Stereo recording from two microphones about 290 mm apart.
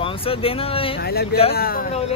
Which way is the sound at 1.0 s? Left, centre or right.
Left.